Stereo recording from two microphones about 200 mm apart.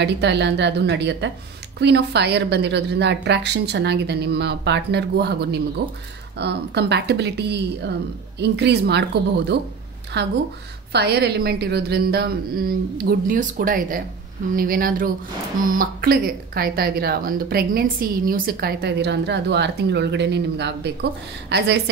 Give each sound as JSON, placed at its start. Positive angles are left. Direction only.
{"t": 0.0, "sound": "a woman's voice", "side_deg": -60}
{"t": 10.1, "sound": "a woman's voice", "side_deg": -55}